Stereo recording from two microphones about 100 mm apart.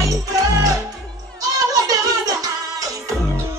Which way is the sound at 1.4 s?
35° right (ahead or behind).